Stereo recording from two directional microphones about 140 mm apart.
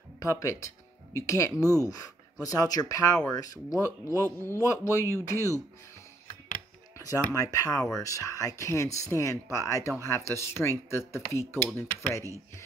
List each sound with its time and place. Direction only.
0.2 s speech: 20° left (ahead or behind)
7.0 s speech: 25° left (ahead or behind)